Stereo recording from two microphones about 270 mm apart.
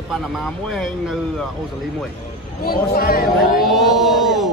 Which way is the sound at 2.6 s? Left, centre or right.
Left.